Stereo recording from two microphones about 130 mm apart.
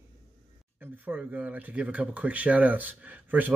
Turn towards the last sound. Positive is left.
turn(degrees=-15)  # may be behind; listen again after turning